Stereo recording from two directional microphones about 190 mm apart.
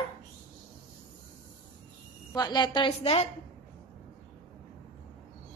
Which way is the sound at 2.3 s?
20° left (ahead or behind).